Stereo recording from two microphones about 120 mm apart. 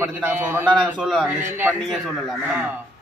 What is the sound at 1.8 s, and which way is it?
Speech, centre (ahead or behind).